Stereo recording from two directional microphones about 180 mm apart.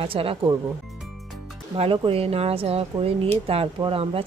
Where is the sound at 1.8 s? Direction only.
30° right (ahead or behind).